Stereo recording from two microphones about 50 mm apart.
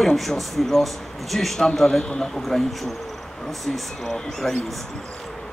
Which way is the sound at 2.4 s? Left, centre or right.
Centre.